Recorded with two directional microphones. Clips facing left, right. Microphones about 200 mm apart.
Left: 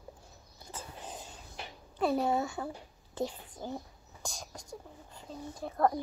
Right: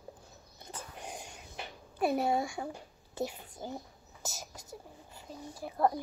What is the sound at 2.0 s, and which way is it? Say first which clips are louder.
A woman's voice: even; 10° right (ahead or behind).